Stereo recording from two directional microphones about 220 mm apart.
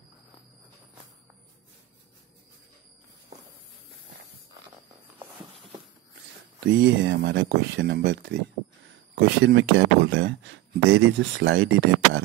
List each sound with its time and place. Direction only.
3.3 s walk: 30° right (ahead or behind)
6.6 s speech: 55° right (ahead or behind)